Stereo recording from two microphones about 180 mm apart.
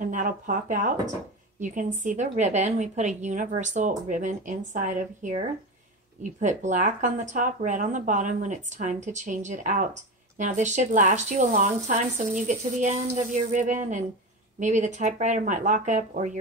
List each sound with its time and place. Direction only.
0.1 s speech: 45° right (ahead or behind)
6.4 s speech: 45° right (ahead or behind)